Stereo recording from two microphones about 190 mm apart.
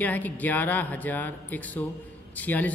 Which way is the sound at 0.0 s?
10° left (ahead or behind).